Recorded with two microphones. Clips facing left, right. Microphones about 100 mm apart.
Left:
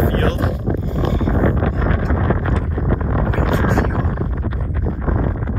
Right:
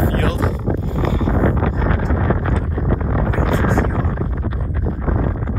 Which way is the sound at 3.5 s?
15° left (ahead or behind).